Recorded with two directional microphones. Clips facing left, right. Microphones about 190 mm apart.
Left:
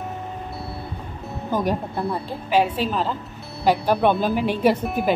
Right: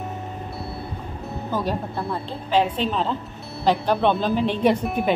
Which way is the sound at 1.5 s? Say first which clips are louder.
Left 3 dB; 15° left (ahead or behind).